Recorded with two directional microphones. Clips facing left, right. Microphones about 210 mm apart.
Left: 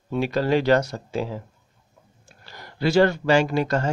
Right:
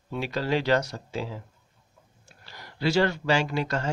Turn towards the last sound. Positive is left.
turn(degrees=45)  # may be behind; listen again after turning